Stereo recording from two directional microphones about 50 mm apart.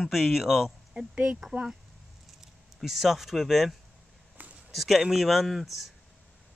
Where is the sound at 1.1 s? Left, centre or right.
Right.